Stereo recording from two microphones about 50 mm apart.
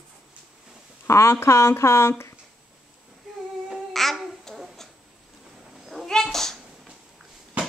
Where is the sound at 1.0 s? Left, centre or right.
Left.